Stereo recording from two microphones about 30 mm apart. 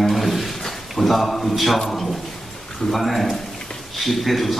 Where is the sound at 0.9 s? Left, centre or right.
Centre.